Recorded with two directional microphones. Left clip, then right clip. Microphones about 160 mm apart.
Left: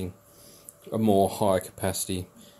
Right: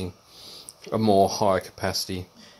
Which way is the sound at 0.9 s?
25° right (ahead or behind).